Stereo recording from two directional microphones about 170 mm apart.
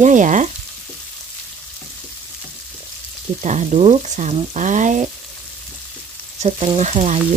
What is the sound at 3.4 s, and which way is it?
Frying, 40° right (ahead or behind).